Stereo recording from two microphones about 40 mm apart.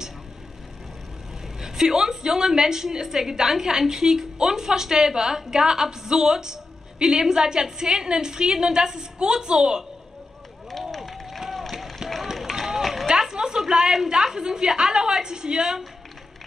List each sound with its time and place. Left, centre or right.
1.6 s a woman's voice: centre
10.7 s run: centre
11.0 s a sound: centre
12.4 s run: centre
13.2 s a woman's voice: centre